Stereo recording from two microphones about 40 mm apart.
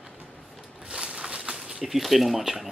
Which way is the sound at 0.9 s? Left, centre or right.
Right.